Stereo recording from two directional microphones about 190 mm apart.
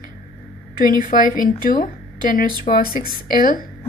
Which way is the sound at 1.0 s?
45° left (ahead or behind).